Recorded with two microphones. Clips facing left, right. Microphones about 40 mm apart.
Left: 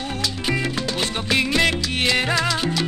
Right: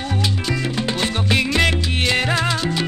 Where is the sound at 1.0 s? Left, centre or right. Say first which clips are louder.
Right 1 dB; right.